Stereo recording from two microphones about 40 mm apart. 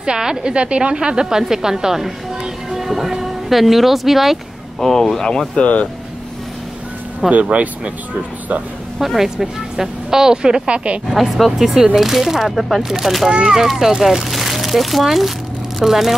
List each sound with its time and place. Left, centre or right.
0.0 s a woman's voice: centre
5.6 s speech: left
7.2 s speech: right
8.9 s a woman's voice: centre; by 11.0 s right
11.1 s speech: centre
11.5 s speech: centre
13.3 s speech: centre